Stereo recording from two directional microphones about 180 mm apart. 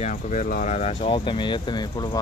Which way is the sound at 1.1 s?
25° left (ahead or behind).